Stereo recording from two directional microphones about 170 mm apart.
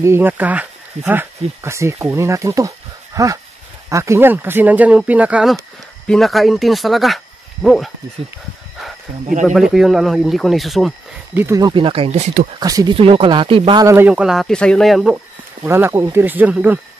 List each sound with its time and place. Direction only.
0.0 s speech: 15° right (ahead or behind)
9.4 s speech: 5° right (ahead or behind)
11.3 s speech: 15° right (ahead or behind); by 12.3 s 35° right (ahead or behind)
12.5 s speech: 20° right (ahead or behind)
13.8 s speech: 10° right (ahead or behind)
15.6 s speech: 15° right (ahead or behind)